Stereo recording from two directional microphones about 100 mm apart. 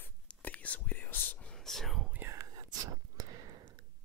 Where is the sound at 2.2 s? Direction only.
30° right (ahead or behind).